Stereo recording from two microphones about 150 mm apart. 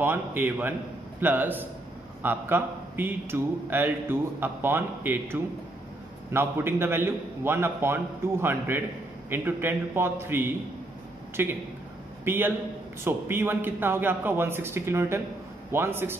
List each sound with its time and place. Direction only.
0.0 s a man's voice: 15° right (ahead or behind)